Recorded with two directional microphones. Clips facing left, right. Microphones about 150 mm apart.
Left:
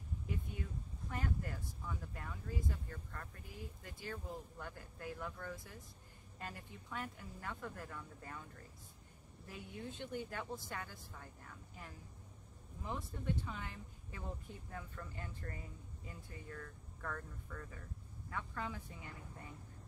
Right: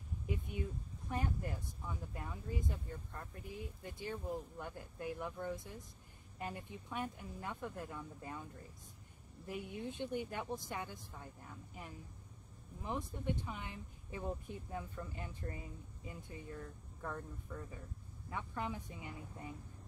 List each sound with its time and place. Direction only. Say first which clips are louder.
1.1 s speech: right 2 dB; 20° right (ahead or behind)
9.5 s speech: right 5 dB; 20° right (ahead or behind)